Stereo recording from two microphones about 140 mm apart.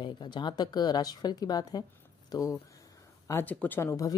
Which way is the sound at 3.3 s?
15° left (ahead or behind).